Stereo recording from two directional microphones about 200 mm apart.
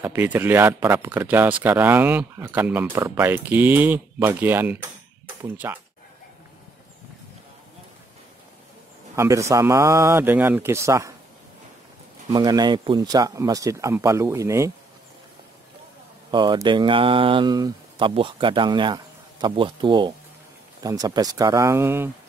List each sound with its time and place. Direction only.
0.0 s speech: 10° right (ahead or behind)
9.1 s speech: 15° right (ahead or behind)
12.3 s speech: 20° right (ahead or behind)
16.3 s speech: 20° right (ahead or behind)